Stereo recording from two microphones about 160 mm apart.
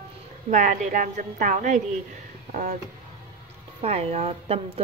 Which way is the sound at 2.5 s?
50° right (ahead or behind).